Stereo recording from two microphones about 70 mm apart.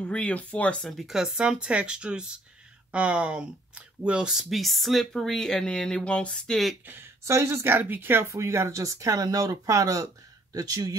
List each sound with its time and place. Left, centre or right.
0.0 s speech: centre
0.9 s speech: centre
6.9 s speech: right
10.5 s speech: right